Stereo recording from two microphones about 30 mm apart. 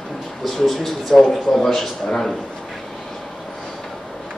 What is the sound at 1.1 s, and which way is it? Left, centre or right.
Speech, centre.